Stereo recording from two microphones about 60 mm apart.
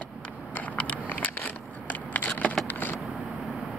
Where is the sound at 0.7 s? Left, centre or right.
Left.